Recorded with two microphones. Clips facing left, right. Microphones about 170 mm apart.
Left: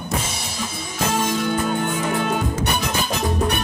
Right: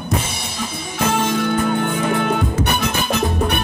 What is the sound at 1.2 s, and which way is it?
Music, 60° right (ahead or behind).